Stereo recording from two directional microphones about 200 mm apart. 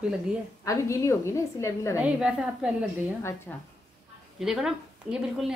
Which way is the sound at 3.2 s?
15° left (ahead or behind).